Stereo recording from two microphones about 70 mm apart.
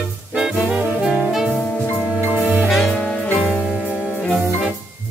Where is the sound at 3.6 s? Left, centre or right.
Centre.